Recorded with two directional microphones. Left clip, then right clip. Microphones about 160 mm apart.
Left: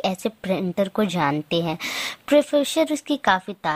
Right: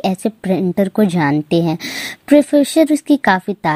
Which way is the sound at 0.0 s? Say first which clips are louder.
Right 5 dB; 10° right (ahead or behind).